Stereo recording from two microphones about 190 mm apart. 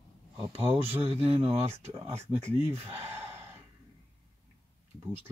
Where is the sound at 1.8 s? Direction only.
15° right (ahead or behind).